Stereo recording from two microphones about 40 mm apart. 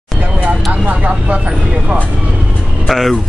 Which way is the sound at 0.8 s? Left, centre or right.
Right.